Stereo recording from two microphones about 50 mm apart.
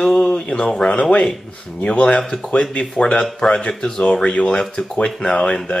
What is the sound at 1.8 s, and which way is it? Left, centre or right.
Speech, left.